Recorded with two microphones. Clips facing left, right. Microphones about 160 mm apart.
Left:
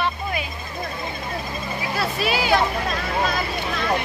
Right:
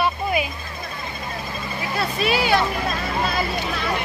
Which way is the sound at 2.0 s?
Centre (ahead or behind).